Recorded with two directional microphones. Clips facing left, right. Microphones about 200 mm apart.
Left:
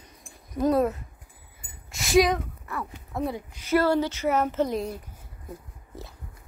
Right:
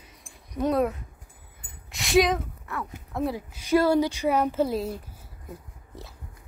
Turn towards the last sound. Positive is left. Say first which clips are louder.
# left 2 dB
turn(degrees=0)  # may be behind; listen again after turning